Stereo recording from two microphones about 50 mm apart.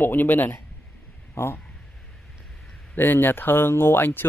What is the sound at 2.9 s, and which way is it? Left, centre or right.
Speech, left.